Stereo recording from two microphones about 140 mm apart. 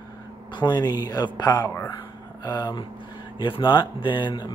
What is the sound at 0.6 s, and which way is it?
Speech, 30° left (ahead or behind).